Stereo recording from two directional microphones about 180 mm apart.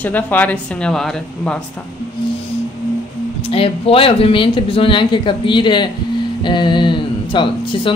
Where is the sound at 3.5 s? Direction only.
30° left (ahead or behind).